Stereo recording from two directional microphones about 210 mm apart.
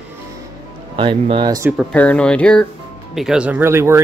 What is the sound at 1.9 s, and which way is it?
Speech, 5° left (ahead or behind).